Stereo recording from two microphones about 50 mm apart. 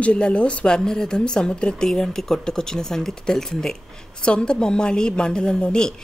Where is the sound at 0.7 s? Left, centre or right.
Centre.